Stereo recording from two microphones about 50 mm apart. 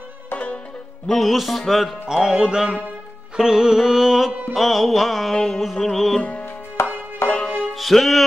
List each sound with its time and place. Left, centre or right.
1.0 s mantra: centre
2.0 s music: centre
4.3 s music: right
4.6 s mantra: centre
6.8 s music: left
7.2 s music: centre
7.7 s music: centre